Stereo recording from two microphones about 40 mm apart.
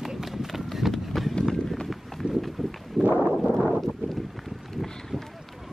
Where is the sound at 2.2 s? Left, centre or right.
Right.